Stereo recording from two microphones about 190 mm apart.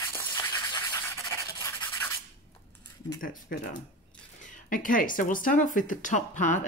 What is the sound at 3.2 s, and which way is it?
Speech, 45° left (ahead or behind).